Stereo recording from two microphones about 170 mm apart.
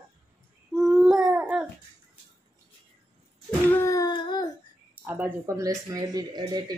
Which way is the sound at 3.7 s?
20° left (ahead or behind).